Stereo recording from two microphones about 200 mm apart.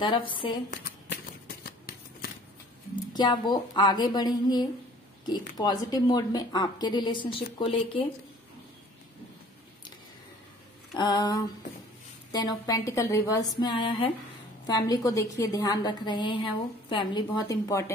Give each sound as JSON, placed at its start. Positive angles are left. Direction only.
{"t": 1.1, "sound": "a sound", "side_deg": 50}
{"t": 3.1, "sound": "a woman's voice", "side_deg": 20}
{"t": 11.0, "sound": "a woman's voice", "side_deg": 20}